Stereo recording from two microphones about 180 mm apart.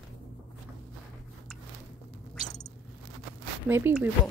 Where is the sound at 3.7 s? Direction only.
15° right (ahead or behind).